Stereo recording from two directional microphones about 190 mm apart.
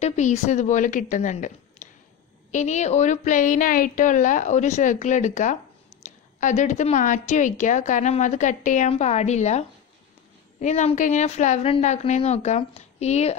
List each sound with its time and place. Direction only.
0.0 s a woman's voice: 35° left (ahead or behind)